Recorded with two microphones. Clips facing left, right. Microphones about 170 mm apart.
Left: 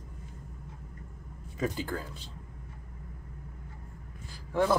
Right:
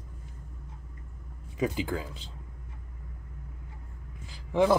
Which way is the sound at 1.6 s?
15° right (ahead or behind).